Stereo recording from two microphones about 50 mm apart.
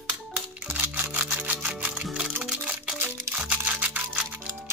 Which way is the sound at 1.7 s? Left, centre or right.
Right.